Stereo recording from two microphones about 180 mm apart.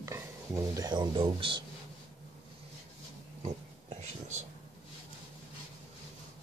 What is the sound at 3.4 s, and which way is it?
Oink, 35° right (ahead or behind).